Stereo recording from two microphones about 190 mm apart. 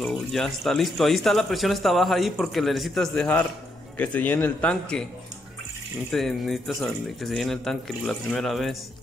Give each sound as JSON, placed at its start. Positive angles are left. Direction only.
{"t": 0.0, "sound": "a man's voice", "side_deg": 0}
{"t": 6.1, "sound": "speech", "side_deg": 0}